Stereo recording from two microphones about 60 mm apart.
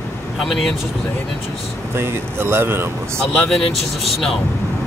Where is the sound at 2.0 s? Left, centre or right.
Right.